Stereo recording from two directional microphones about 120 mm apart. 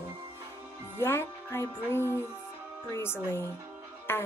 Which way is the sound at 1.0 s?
20° left (ahead or behind).